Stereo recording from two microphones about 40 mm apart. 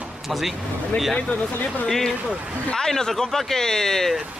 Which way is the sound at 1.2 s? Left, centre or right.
Left.